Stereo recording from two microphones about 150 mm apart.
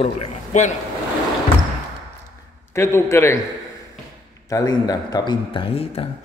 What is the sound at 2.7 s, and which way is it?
Speech, 20° left (ahead or behind).